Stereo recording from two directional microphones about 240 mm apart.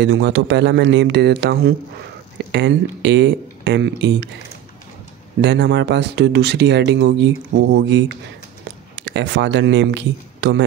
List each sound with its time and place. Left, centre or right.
0.0 s speech: right
5.4 s a man's voice: right